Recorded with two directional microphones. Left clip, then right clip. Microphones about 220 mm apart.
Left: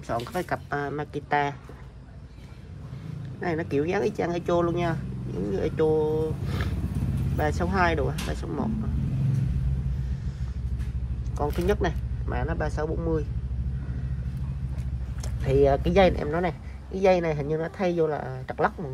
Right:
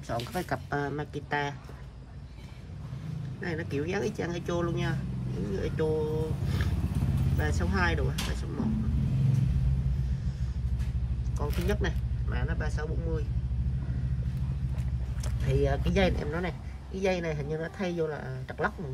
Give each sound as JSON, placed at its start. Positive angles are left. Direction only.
{"t": 0.1, "sound": "speech", "side_deg": -15}
{"t": 3.3, "sound": "speech", "side_deg": -10}
{"t": 6.8, "sound": "vehicle", "side_deg": 0}
{"t": 7.4, "sound": "speech", "side_deg": -10}
{"t": 11.3, "sound": "speech", "side_deg": -5}
{"t": 15.4, "sound": "speech", "side_deg": -5}